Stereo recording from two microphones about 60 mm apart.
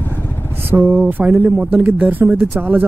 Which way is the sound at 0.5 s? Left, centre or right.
Right.